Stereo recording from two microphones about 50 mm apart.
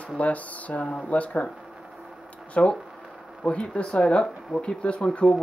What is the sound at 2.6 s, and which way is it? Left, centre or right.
Speech, left.